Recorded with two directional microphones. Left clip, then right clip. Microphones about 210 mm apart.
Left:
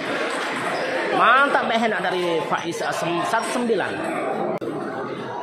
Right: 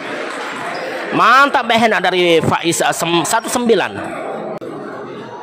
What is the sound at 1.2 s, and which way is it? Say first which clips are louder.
A man's voice: right 7 dB; 35° right (ahead or behind).